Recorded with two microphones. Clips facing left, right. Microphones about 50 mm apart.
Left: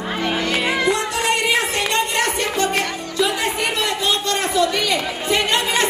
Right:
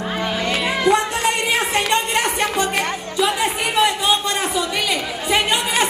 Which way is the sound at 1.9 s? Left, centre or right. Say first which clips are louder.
Right 1 dB; right.